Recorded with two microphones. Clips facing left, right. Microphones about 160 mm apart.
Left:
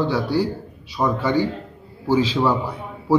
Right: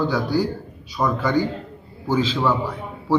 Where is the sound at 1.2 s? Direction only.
30° left (ahead or behind).